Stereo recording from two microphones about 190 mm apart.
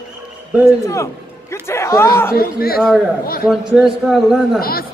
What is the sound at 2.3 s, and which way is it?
Speech, 50° left (ahead or behind).